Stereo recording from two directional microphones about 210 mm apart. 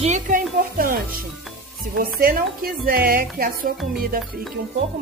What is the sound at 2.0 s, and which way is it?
A woman's voice, 45° right (ahead or behind).